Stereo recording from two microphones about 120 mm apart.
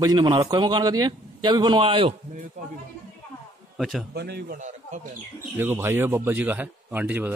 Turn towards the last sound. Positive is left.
turn(degrees=-15)  # may be behind; listen again after turning